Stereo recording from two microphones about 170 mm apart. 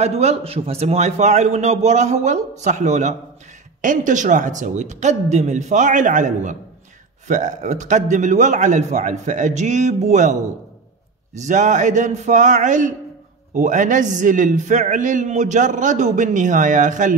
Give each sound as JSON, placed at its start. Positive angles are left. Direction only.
{"t": 0.0, "sound": "a man's voice", "side_deg": -40}
{"t": 11.3, "sound": "a man's voice", "side_deg": -45}